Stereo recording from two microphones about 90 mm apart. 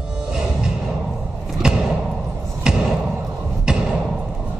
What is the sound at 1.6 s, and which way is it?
Thump, 10° right (ahead or behind).